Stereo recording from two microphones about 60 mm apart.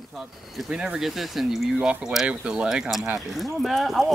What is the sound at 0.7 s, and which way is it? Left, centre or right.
Speech, centre.